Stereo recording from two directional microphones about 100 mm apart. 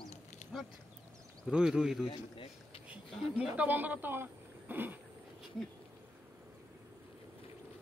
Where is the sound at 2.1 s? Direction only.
65° left (ahead or behind).